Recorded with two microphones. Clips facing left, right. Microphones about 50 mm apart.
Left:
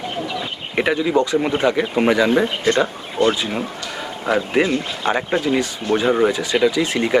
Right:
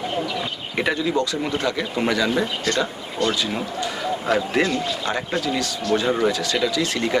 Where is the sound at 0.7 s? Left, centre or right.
Centre.